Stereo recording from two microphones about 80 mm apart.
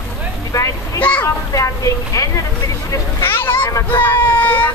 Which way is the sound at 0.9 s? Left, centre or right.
Centre.